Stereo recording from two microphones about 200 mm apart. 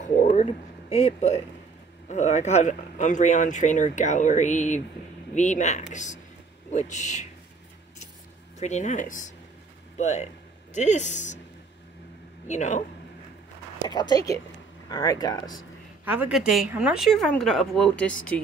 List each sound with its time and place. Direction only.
0.0 s speech: 35° left (ahead or behind)
8.5 s a man's voice: 35° left (ahead or behind)
12.4 s speech: 35° left (ahead or behind)
13.8 s speech: 20° left (ahead or behind)
16.1 s speech: 5° right (ahead or behind)